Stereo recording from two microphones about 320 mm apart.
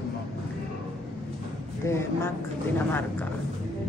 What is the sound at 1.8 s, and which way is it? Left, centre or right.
Speech, centre.